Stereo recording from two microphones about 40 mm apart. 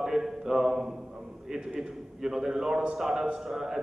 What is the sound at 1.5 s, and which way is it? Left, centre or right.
A man's voice, centre.